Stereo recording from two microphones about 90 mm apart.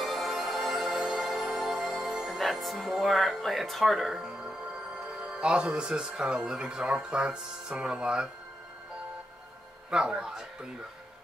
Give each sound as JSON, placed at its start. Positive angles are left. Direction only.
{"t": 0.0, "sound": "music", "side_deg": 0}
{"t": 5.2, "sound": "speech", "side_deg": -10}
{"t": 9.8, "sound": "speech", "side_deg": -10}